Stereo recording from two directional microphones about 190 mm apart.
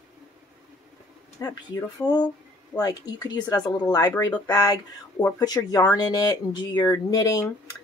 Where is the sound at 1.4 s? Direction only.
20° left (ahead or behind).